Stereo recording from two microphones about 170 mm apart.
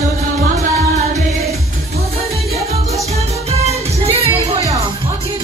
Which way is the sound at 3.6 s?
35° right (ahead or behind).